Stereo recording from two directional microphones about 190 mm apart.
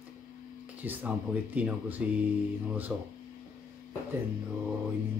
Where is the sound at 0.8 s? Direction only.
10° right (ahead or behind).